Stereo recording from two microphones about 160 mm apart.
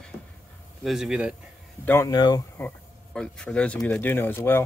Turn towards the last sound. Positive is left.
turn(degrees=15)  # may be behind; listen again after turning